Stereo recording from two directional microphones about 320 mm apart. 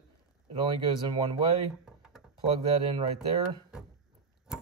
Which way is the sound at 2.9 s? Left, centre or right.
Centre.